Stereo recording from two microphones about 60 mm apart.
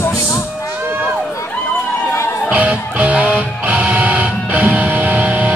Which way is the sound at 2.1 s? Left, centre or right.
Left.